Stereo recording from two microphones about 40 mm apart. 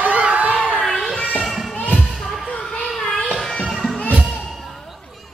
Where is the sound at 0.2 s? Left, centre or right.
Right.